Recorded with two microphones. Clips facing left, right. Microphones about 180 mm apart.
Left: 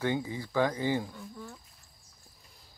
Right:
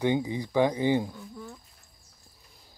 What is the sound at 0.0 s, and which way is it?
Speech, 15° right (ahead or behind).